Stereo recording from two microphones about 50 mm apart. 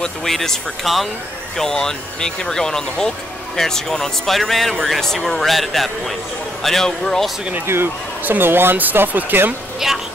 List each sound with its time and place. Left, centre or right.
0.0 s speech: centre
7.6 s speech: right
8.2 s speech: right
9.8 s speech: centre